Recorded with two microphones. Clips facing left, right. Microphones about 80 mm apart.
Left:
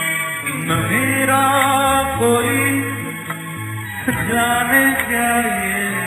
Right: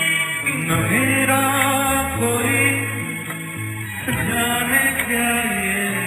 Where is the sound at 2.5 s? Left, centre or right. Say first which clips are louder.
Left 2 dB; left.